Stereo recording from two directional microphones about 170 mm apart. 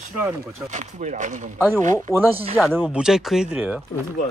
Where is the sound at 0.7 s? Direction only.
45° right (ahead or behind).